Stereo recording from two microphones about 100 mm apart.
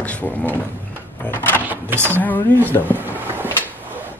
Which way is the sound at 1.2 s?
20° left (ahead or behind).